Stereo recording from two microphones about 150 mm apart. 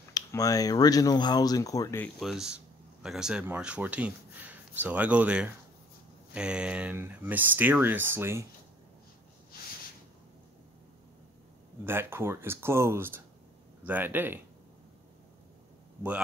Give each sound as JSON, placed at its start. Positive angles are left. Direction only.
{"t": 0.1, "sound": "speech", "side_deg": 25}
{"t": 2.1, "sound": "speech", "side_deg": 0}
{"t": 11.8, "sound": "speech", "side_deg": -15}